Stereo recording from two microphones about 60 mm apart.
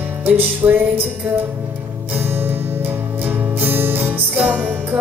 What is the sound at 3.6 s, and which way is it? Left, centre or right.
Music, right.